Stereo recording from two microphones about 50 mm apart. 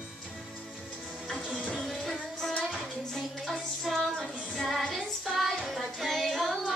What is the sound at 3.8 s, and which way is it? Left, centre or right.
Child singing, centre.